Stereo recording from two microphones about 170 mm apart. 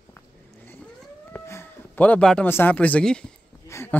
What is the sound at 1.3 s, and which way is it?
Speech, 15° left (ahead or behind).